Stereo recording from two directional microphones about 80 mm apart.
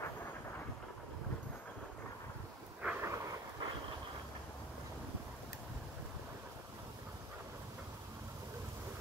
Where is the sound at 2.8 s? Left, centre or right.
Centre.